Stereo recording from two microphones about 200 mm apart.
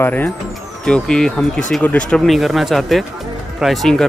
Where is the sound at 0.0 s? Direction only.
10° left (ahead or behind).